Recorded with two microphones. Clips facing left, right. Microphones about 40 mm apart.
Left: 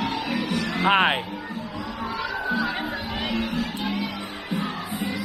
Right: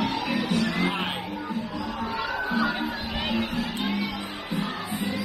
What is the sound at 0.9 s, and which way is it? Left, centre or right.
Music, left.